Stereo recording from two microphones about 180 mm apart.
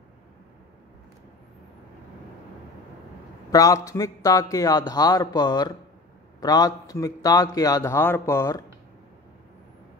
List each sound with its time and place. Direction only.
3.5 s a man's voice: 20° left (ahead or behind)